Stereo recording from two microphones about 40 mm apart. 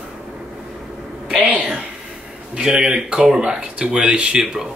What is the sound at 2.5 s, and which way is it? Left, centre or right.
Speech, centre.